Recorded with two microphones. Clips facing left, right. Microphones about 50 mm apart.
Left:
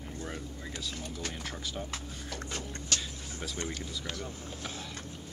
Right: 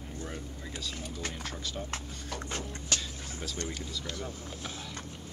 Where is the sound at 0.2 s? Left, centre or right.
Centre.